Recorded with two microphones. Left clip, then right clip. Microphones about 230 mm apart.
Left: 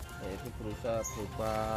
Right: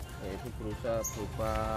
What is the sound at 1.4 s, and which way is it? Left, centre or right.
Speech, left.